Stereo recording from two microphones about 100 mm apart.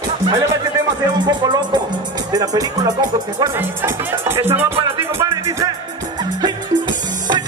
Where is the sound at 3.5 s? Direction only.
20° right (ahead or behind).